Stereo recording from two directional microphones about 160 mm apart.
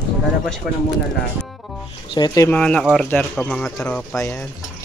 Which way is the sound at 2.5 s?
5° left (ahead or behind).